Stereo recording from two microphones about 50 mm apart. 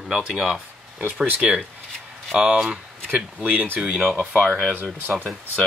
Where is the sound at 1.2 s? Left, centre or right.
Right.